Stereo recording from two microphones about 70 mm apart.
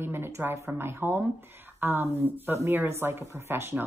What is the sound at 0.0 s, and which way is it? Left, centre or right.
A woman's voice, right.